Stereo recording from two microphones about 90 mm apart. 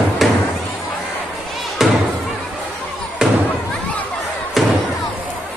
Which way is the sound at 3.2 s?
5° right (ahead or behind).